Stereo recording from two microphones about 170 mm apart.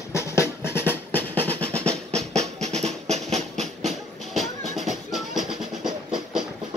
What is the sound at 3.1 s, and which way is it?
Music, 40° right (ahead or behind).